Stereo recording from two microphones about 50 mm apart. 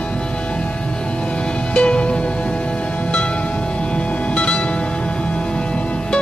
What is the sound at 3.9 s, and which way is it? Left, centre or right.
Music, left.